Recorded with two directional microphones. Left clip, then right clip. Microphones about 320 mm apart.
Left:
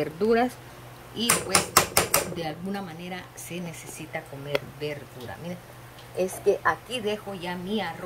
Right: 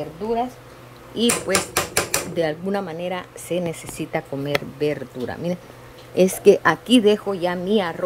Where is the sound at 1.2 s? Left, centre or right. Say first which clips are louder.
Right 7 dB; centre.